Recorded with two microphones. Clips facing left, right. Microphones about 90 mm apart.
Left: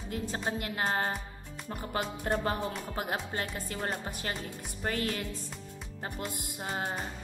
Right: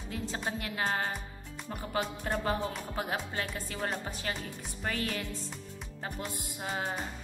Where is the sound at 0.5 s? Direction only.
35° left (ahead or behind).